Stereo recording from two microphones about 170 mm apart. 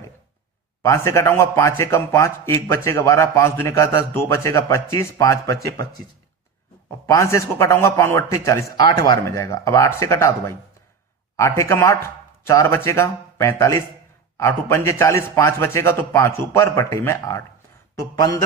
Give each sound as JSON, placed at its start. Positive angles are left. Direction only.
{"t": 0.8, "sound": "a man's voice", "side_deg": 15}
{"t": 7.1, "sound": "a man's voice", "side_deg": 15}